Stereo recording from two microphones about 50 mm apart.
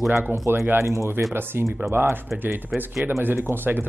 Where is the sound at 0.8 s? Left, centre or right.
Right.